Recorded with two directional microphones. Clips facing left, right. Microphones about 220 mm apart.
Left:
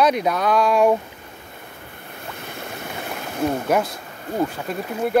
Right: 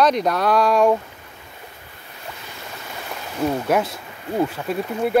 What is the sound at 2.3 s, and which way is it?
Boat, 55° left (ahead or behind).